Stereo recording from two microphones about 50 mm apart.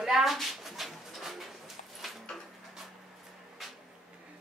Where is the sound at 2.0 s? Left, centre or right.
Centre.